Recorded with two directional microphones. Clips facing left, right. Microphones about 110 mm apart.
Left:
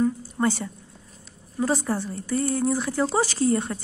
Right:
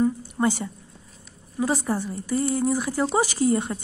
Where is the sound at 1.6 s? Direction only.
15° right (ahead or behind).